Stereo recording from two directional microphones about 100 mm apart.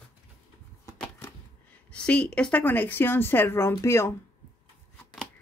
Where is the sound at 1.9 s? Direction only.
10° left (ahead or behind); by 4.1 s 25° left (ahead or behind).